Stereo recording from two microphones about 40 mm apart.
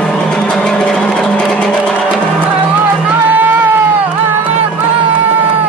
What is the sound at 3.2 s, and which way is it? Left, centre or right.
Music, right.